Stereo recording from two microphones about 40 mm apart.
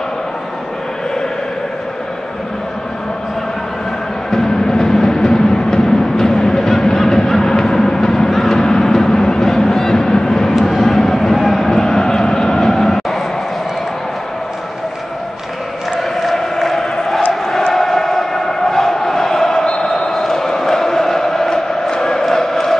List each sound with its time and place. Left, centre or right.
4.3 s music: centre
10.6 s vehicle: centre
16.0 s a sound: centre
17.3 s crowd: centre
19.8 s chant: centre
21.9 s a sound: centre